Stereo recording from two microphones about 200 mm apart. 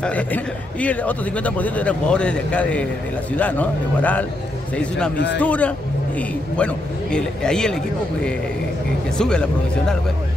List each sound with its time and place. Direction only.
0.0 s a man's voice: 5° left (ahead or behind)
5.1 s a man's voice: 60° left (ahead or behind)
5.4 s a man's voice: 5° left (ahead or behind)
9.2 s a man's voice: 5° left (ahead or behind)